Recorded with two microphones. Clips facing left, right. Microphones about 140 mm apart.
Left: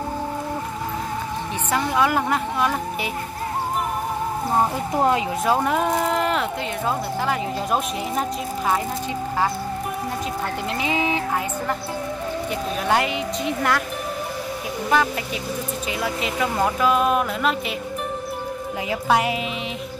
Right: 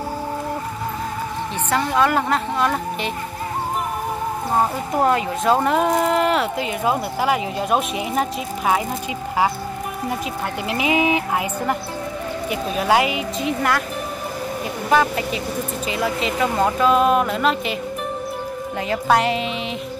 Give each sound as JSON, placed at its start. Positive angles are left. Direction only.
{"t": 1.7, "sound": "a woman's voice", "side_deg": 10}
{"t": 5.0, "sound": "a woman's voice", "side_deg": 15}
{"t": 5.5, "sound": "speech", "side_deg": 5}
{"t": 10.7, "sound": "speech", "side_deg": -10}
{"t": 14.9, "sound": "speech", "side_deg": 0}
{"t": 18.9, "sound": "speech", "side_deg": 5}